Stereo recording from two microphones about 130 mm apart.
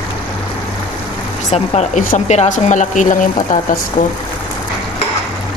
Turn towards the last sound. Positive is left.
turn(degrees=75)  # may be behind; listen again after turning